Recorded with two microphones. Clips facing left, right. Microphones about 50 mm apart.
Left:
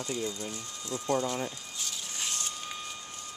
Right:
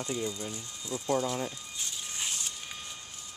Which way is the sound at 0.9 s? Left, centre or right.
Centre.